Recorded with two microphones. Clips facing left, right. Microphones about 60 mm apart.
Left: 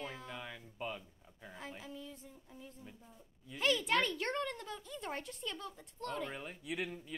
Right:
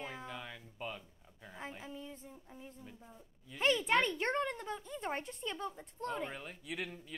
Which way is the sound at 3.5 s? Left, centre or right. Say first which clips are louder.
Right 2 dB; right.